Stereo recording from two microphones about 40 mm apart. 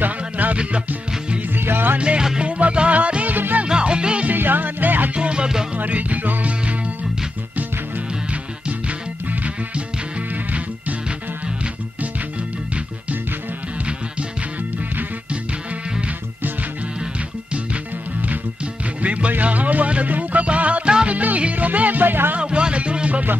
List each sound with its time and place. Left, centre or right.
0.0 s music: right
0.6 s music: right
1.5 s music: right
2.0 s music: right
3.6 s music: right
4.4 s music: right
5.1 s music: right
5.8 s music: right
8.3 s music: right
19.0 s music: right
22.4 s music: right